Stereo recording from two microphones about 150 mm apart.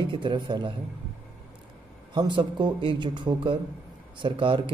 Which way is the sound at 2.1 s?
30° right (ahead or behind).